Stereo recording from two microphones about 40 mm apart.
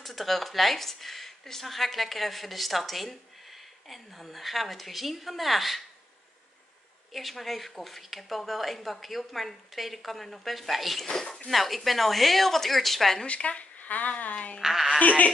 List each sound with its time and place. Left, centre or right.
0.0 s speech: centre
7.1 s speech: centre
13.3 s speech: left
14.6 s speech: centre
15.0 s speech: left